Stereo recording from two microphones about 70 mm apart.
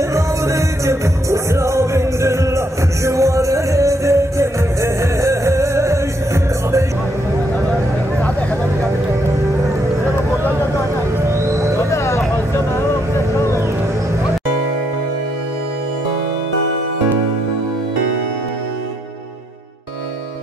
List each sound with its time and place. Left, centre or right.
0.1 s music: right
11.2 s music: right
11.9 s vehicle: left